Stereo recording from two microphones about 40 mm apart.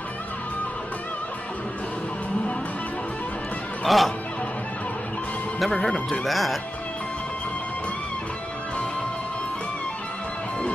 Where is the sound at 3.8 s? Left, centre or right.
Centre.